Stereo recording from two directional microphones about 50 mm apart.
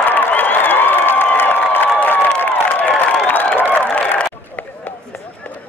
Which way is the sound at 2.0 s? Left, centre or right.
Left.